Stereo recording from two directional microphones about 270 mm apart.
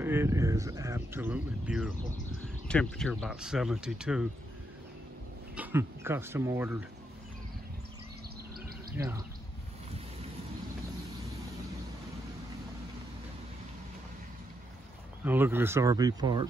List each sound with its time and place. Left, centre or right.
0.0 s speech: centre
5.6 s speech: centre
8.9 s speech: centre
15.2 s speech: centre